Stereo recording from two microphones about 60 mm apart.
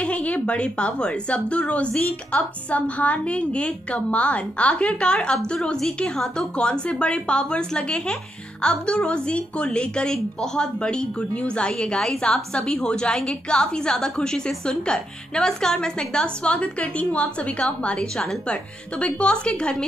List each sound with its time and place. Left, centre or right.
0.0 s a woman's voice: left